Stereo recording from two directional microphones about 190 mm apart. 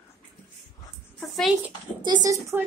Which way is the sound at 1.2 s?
Centre (ahead or behind).